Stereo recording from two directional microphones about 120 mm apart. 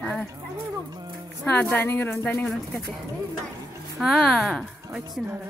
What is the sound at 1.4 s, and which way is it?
A woman's voice, 15° left (ahead or behind).